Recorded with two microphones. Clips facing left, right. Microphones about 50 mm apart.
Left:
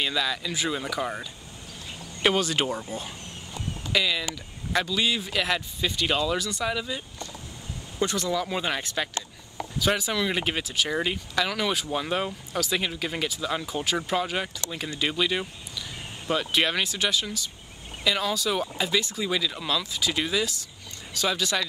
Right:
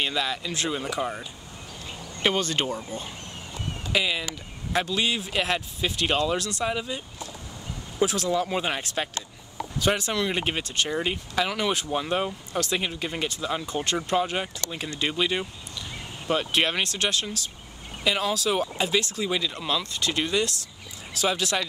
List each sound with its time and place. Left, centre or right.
0.0 s speech: centre
2.2 s speech: centre
3.9 s speech: centre
4.8 s speech: centre
6.6 s speech: centre
8.0 s speech: centre
8.3 s speech: centre
9.8 s speech: centre
16.8 s speech: centre
18.0 s speech: centre